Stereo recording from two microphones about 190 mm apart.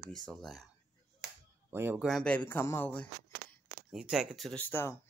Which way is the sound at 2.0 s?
5° left (ahead or behind).